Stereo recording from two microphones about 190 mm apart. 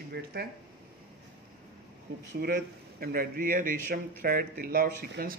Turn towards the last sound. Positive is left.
turn(degrees=-50)  # may be behind; listen again after turning